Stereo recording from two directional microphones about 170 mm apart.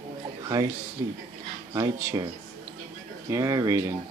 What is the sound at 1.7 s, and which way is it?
Speech, 20° right (ahead or behind).